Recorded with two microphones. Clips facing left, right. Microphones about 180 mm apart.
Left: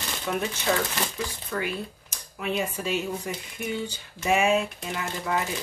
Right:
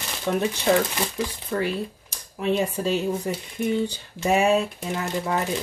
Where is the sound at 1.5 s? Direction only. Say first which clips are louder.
Right 5 dB; 35° right (ahead or behind).